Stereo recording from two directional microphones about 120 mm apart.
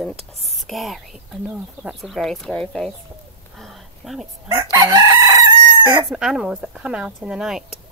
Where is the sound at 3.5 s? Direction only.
Centre (ahead or behind).